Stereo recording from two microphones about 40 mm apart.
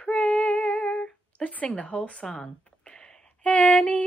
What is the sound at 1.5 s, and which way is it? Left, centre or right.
Music, left.